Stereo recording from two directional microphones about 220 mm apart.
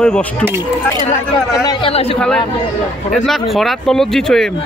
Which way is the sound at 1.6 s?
20° left (ahead or behind).